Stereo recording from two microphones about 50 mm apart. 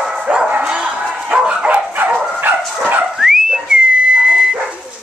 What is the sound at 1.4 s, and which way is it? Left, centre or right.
Dog, centre.